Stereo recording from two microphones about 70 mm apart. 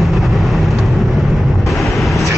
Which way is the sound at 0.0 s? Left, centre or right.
Centre.